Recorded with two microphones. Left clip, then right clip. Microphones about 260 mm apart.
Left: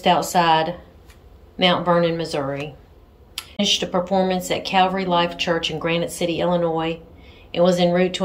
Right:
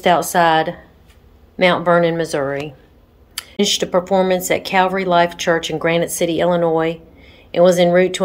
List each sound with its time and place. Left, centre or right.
0.0 s a woman's voice: centre